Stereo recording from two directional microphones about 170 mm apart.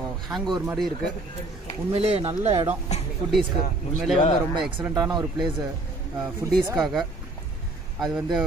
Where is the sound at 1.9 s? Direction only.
35° right (ahead or behind).